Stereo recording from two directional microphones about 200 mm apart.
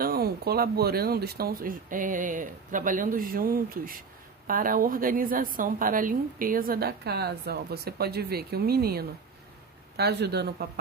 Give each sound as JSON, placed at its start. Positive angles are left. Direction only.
{"t": 0.0, "sound": "a woman's voice", "side_deg": -50}